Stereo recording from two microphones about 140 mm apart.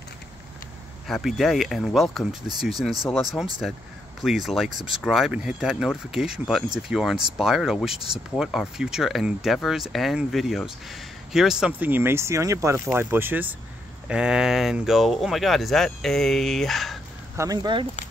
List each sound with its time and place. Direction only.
1.0 s speech: centre (ahead or behind)
3.6 s speech: centre (ahead or behind)
17.4 s speech: 30° right (ahead or behind)